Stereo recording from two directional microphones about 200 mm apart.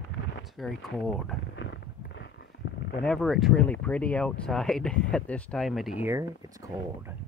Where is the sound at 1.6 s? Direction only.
60° left (ahead or behind).